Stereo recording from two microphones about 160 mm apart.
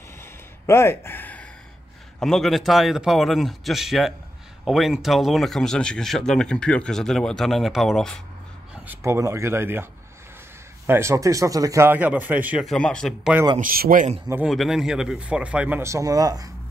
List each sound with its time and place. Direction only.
0.2 s a sound: 15° left (ahead or behind)
2.1 s speech: 5° left (ahead or behind)
8.8 s a man's voice: 20° right (ahead or behind)
10.9 s a man's voice: 15° right (ahead or behind)
12.6 s speech: 5° left (ahead or behind)
13.6 s speech: 65° right (ahead or behind)
14.3 s a man's voice: 5° right (ahead or behind); by 16.5 s 25° right (ahead or behind)